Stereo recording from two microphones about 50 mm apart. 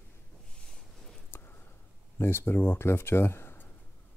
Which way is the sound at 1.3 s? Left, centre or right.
Left.